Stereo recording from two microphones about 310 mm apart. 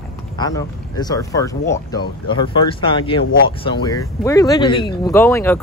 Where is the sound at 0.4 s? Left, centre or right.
Centre.